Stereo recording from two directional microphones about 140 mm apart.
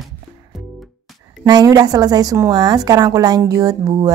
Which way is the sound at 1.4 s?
25° right (ahead or behind).